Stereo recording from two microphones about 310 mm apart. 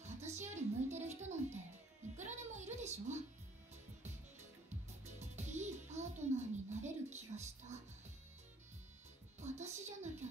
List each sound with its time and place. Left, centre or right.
0.2 s music: right
2.1 s a sound: right
5.0 s music: right
9.4 s music: right